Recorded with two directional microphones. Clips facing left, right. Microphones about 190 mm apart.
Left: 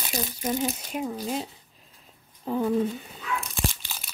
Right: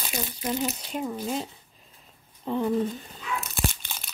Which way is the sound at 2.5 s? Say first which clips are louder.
Left 1 dB; 5° left (ahead or behind).